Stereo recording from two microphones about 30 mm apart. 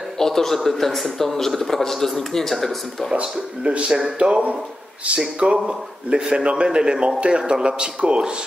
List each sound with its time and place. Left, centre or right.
0.2 s a sound: centre
0.7 s a man's voice: centre
3.2 s a man's voice: right
5.7 s a man's voice: right